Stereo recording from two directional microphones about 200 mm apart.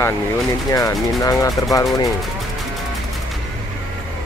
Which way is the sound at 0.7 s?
15° left (ahead or behind).